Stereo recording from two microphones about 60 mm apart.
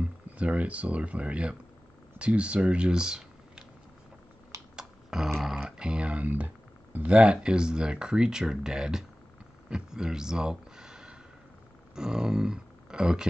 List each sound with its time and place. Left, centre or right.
0.0 s speech: right
4.7 s a sound: centre
5.3 s speech: centre
11.9 s grunt: centre